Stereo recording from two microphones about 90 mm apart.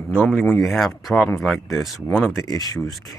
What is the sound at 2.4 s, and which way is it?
Speech, 45° left (ahead or behind).